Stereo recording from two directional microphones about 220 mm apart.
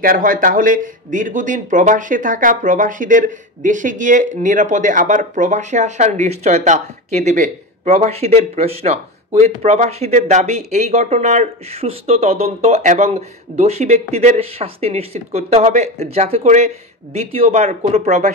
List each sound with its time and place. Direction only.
0.0 s speech: 40° right (ahead or behind)